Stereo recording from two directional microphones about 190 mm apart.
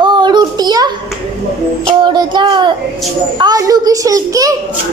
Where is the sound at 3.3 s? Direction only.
20° right (ahead or behind).